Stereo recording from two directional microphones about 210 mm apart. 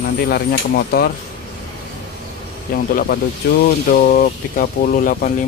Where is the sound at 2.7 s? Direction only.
45° left (ahead or behind).